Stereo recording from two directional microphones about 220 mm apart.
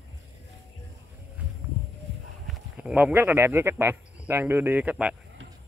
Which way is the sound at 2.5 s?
5° right (ahead or behind).